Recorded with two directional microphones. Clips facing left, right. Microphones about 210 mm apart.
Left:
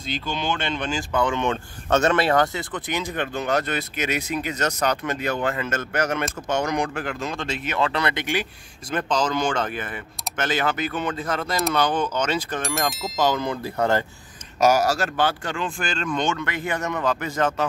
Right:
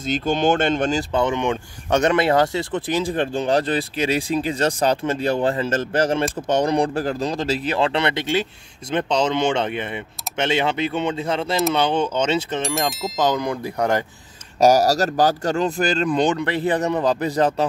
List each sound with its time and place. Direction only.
0.0 s speech: 50° right (ahead or behind)
1.1 s speech: 20° right (ahead or behind)
14.6 s speech: 35° right (ahead or behind)